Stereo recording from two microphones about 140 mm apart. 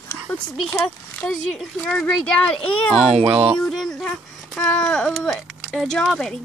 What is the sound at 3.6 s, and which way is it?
Speech, 5° left (ahead or behind).